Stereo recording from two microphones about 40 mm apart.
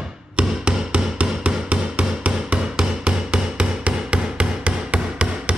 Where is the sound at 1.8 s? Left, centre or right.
Centre.